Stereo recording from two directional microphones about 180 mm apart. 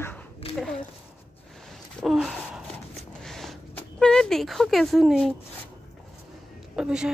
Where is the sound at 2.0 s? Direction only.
Centre (ahead or behind).